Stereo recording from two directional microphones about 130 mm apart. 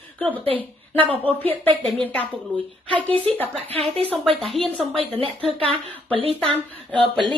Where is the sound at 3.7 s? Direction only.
45° right (ahead or behind).